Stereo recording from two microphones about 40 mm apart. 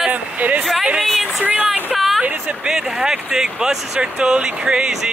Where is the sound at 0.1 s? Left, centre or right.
Right.